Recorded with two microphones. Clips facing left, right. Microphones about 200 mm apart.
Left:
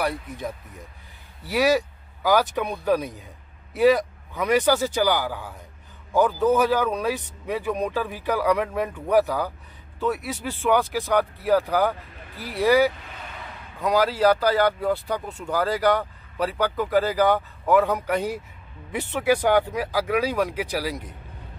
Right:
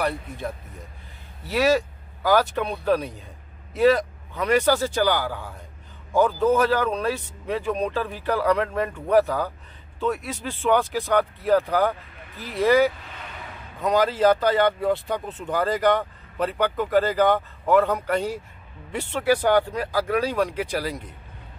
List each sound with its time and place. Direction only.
0.0 s speech: 15° left (ahead or behind)
1.5 s speech: 15° left (ahead or behind)
10.0 s speech: 10° left (ahead or behind)
13.7 s speech: centre (ahead or behind)